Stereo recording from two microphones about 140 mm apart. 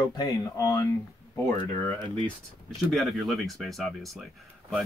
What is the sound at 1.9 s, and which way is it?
Speech, 35° right (ahead or behind).